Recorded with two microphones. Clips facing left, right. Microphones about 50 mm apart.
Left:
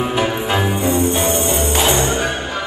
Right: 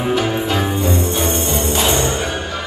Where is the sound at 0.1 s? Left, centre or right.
Left.